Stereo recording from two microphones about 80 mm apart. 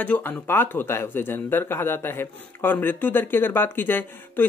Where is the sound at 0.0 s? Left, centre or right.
Left.